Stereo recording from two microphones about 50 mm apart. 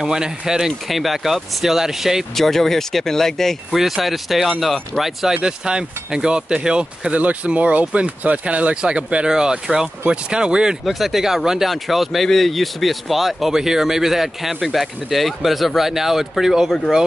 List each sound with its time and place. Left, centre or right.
0.0 s speech: centre
2.3 s speech: centre
3.7 s speech: centre
5.3 s speech: centre
7.2 s speech: right
10.9 s speech: centre